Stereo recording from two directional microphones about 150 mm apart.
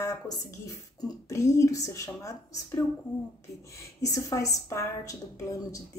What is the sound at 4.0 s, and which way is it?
A woman's voice, 20° left (ahead or behind).